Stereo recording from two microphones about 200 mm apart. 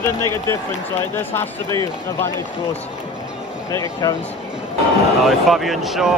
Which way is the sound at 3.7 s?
15° left (ahead or behind).